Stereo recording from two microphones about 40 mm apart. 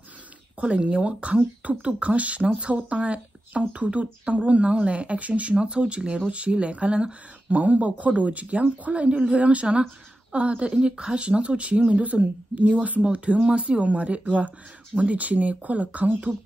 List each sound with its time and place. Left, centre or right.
0.6 s speech: right